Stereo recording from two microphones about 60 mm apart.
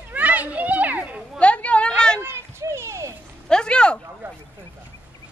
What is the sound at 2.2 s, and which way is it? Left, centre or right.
Children playing, right.